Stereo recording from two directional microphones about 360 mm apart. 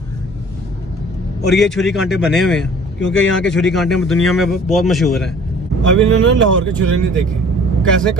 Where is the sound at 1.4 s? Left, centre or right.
Centre.